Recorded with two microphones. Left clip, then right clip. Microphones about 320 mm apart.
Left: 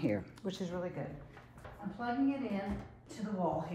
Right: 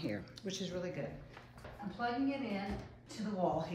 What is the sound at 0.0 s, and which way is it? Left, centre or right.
Speech, centre.